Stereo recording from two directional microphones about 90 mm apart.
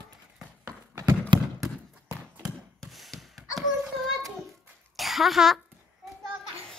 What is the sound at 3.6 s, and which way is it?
Child singing, centre (ahead or behind).